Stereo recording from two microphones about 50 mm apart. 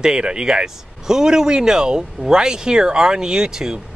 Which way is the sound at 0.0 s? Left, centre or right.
Centre.